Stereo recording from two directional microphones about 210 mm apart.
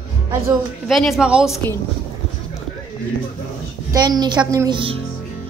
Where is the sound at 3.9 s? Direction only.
20° right (ahead or behind).